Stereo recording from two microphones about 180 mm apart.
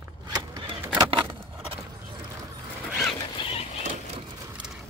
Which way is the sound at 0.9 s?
25° right (ahead or behind).